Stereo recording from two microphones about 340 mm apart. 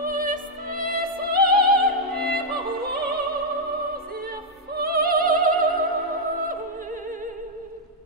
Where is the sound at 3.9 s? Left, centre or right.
Right.